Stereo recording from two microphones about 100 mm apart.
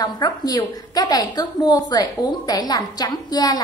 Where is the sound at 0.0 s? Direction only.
40° left (ahead or behind).